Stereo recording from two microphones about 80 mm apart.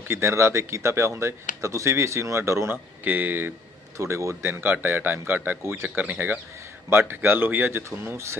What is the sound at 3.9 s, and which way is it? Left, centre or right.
Speech, right.